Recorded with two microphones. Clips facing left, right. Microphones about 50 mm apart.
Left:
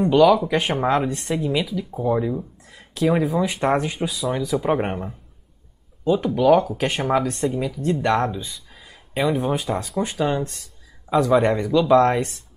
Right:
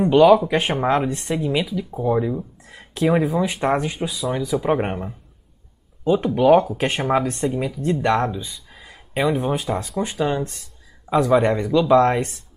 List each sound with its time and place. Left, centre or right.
0.0 s speech: centre
0.5 s speech: centre
2.7 s a sound: centre
3.3 s speech: centre; by 6.7 s right
6.9 s speech: centre
11.1 s speech: centre
11.4 s speech: centre